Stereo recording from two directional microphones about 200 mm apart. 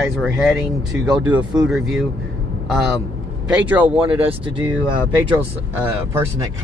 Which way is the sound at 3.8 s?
25° right (ahead or behind).